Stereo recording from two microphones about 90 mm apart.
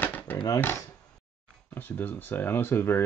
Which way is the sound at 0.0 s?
20° left (ahead or behind).